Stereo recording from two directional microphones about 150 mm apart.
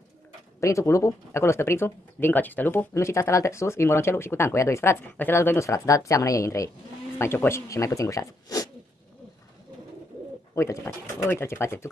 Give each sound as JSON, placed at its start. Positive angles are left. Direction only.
{"t": 0.6, "sound": "speech", "side_deg": 20}
{"t": 10.5, "sound": "speech", "side_deg": 20}